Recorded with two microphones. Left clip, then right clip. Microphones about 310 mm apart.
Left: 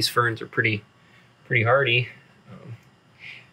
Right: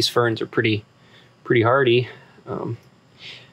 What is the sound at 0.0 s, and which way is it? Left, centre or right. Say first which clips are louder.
Speech: right 3 dB; centre.